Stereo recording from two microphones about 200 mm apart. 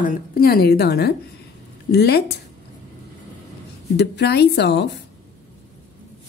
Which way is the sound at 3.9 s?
55° left (ahead or behind).